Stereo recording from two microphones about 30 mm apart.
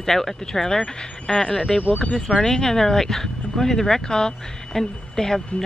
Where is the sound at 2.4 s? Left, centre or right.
Left.